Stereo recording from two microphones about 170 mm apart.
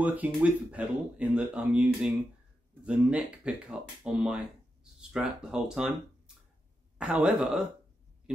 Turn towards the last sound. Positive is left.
turn(degrees=-5)  # may be behind; listen again after turning